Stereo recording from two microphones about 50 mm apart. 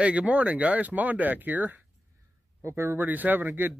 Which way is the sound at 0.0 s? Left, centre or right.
Right.